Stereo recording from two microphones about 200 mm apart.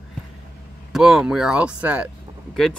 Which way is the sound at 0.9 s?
Centre (ahead or behind).